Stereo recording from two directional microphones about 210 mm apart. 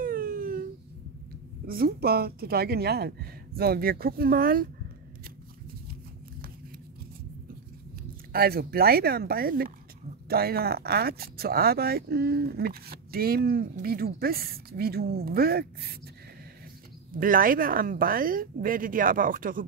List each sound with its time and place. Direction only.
0.0 s a sound: 45° right (ahead or behind)
1.7 s speech: 45° right (ahead or behind)
8.3 s speech: 45° right (ahead or behind)
17.1 s speech: 40° right (ahead or behind)